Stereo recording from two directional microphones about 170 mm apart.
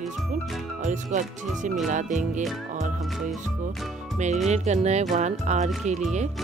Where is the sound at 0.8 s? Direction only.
45° right (ahead or behind).